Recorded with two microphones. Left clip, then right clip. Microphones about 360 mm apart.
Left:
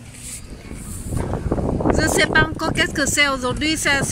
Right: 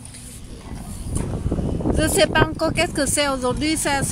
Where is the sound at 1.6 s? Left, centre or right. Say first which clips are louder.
Left 5 dB; left.